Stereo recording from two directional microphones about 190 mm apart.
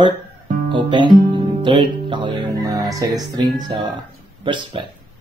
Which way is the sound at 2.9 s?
20° right (ahead or behind).